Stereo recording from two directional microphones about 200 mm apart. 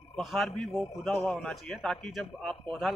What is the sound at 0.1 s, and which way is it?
A man's voice, centre (ahead or behind).